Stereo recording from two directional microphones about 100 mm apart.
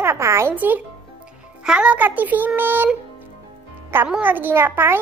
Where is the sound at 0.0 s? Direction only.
25° right (ahead or behind).